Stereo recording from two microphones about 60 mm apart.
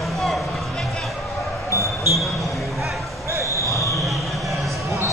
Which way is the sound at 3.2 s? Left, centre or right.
Right.